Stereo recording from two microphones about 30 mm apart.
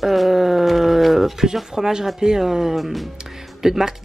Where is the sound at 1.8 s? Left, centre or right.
Centre.